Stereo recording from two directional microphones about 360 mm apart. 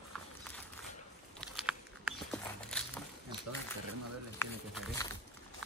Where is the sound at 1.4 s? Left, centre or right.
Centre.